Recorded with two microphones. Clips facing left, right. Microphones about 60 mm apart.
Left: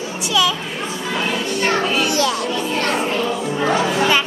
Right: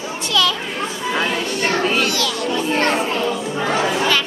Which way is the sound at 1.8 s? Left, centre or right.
Right.